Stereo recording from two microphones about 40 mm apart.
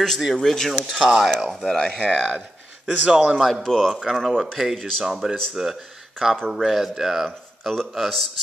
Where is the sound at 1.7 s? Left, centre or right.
Left.